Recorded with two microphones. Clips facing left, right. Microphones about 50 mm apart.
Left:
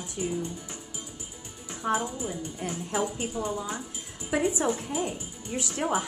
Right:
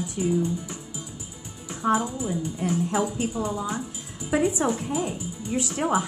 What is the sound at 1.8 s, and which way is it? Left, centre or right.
Speech, centre.